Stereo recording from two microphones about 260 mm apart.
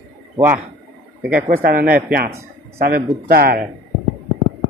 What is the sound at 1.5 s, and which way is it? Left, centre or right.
Speech, right.